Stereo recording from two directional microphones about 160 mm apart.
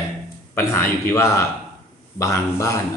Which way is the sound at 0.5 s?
15° left (ahead or behind).